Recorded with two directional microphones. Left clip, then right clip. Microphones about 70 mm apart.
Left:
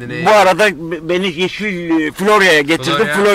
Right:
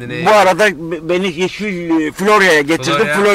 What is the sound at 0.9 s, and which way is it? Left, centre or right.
Speech, centre.